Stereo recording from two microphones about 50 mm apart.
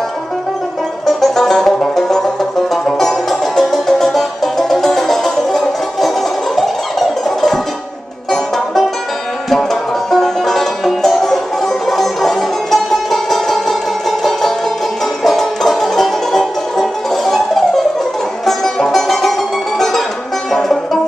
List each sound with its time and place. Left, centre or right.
1.0 s music: centre
10.1 s music: centre
15.2 s music: centre
20.5 s music: centre